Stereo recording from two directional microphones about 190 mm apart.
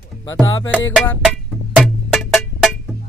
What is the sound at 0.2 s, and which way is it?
Music, 20° left (ahead or behind).